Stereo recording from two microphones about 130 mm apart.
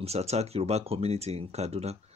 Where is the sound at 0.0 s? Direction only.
55° right (ahead or behind).